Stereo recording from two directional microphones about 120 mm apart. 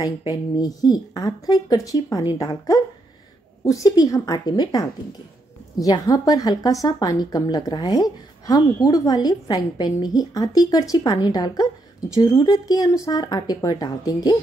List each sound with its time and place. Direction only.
0.0 s a woman's voice: 35° left (ahead or behind)